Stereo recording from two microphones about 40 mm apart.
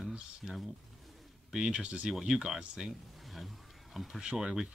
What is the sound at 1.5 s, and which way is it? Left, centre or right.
Speech, right.